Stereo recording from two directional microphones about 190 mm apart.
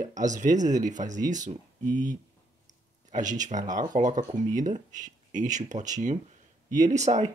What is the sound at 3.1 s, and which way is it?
Speech, 40° right (ahead or behind).